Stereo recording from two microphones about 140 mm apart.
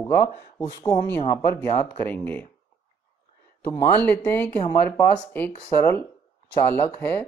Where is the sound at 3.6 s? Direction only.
20° left (ahead or behind).